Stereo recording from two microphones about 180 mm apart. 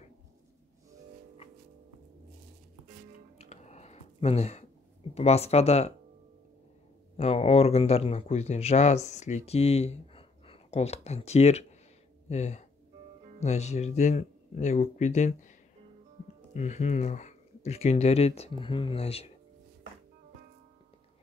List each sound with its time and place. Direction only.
3.3 s typing: 35° left (ahead or behind)
5.1 s speech: 35° left (ahead or behind)
7.2 s speech: 35° left (ahead or behind)
16.5 s speech: 40° left (ahead or behind)